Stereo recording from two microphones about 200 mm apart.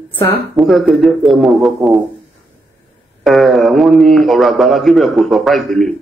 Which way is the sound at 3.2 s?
Centre (ahead or behind).